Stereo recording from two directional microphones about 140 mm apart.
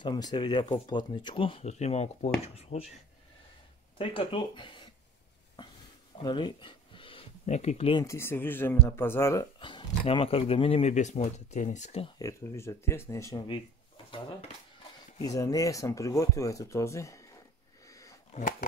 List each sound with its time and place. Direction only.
0.0 s speech: 30° left (ahead or behind); by 2.8 s 45° left (ahead or behind)
4.0 s speech: 40° left (ahead or behind)
6.2 s a sound: 35° left (ahead or behind)
7.4 s speech: 50° left (ahead or behind)
8.0 s speech: 20° left (ahead or behind)
9.6 s speech: 35° left (ahead or behind); by 12.1 s 50° left (ahead or behind)
12.2 s speech: 20° left (ahead or behind)
15.2 s speech: 25° left (ahead or behind)
17.8 s a sound: 25° left (ahead or behind)